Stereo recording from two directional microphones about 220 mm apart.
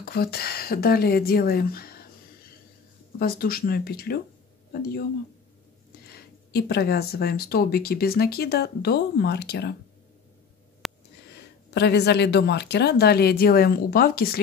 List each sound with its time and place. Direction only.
0.0 s speech: 45° left (ahead or behind)
3.2 s speech: 40° left (ahead or behind)
6.0 s speech: 45° left (ahead or behind)
10.8 s a sound: centre (ahead or behind)
11.7 s speech: 50° left (ahead or behind)